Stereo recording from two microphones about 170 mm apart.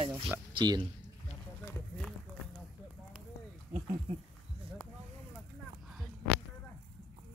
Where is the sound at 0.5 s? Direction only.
25° right (ahead or behind).